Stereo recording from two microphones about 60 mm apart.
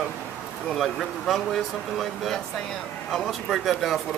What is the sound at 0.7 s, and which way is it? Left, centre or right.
Speech, centre.